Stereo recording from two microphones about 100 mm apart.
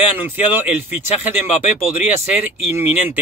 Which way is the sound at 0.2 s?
20° right (ahead or behind).